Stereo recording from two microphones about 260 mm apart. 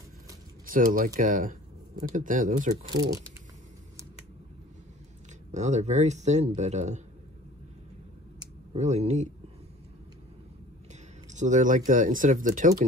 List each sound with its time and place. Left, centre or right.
0.7 s speech: right
2.9 s speech: centre
5.5 s speech: right
8.4 s a sound: right
11.2 s speech: right